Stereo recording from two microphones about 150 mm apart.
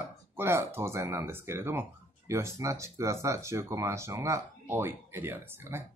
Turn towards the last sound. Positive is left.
turn(degrees=-15)  # may be behind; listen again after turning